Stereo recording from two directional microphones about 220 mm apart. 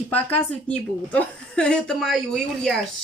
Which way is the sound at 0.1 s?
5° left (ahead or behind).